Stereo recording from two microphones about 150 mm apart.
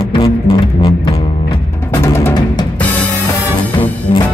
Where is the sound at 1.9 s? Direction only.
15° left (ahead or behind).